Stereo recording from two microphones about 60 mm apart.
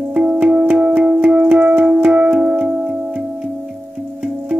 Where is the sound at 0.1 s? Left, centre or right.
Right.